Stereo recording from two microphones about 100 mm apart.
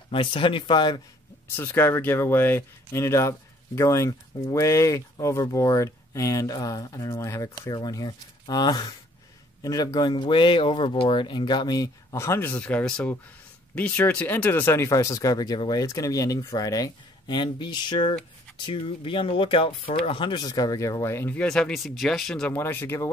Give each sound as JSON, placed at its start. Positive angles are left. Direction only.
{"t": 0.1, "sound": "speech", "side_deg": 60}
{"t": 1.6, "sound": "speech", "side_deg": 20}
{"t": 12.5, "sound": "speech", "side_deg": 10}
{"t": 21.4, "sound": "speech", "side_deg": 10}
{"t": 22.5, "sound": "speech", "side_deg": 20}